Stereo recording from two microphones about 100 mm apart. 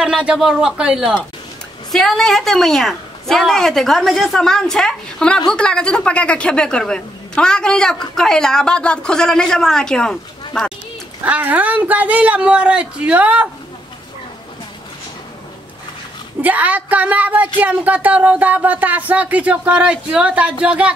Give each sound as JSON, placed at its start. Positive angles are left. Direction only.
{"t": 0.0, "sound": "speech", "side_deg": -10}
{"t": 1.9, "sound": "a woman's voice", "side_deg": 5}
{"t": 11.2, "sound": "speech", "side_deg": -15}
{"t": 16.3, "sound": "speech", "side_deg": -15}